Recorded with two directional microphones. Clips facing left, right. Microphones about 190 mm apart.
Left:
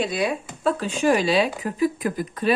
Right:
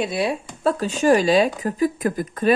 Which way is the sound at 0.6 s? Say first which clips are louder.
Right 2 dB; 40° right (ahead or behind).